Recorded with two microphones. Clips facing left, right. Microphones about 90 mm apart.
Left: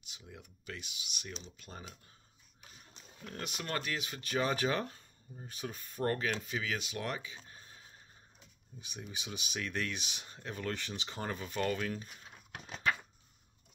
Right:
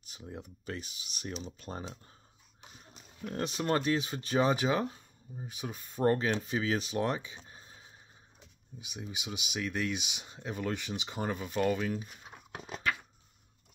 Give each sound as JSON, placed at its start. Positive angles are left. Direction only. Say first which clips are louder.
{"t": 0.0, "sound": "speech", "louder": "right 8 dB", "side_deg": -40}
{"t": 1.7, "sound": "speech", "louder": "right 7 dB", "side_deg": -35}
{"t": 3.3, "sound": "speech", "louder": "right 9 dB", "side_deg": -30}
{"t": 12.5, "sound": "a sound", "louder": "right 4 dB", "side_deg": -15}